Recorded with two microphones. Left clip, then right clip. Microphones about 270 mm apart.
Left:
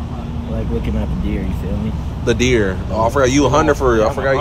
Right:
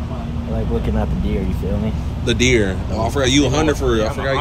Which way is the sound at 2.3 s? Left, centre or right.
Centre.